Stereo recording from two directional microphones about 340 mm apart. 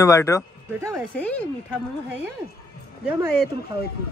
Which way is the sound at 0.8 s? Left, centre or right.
Centre.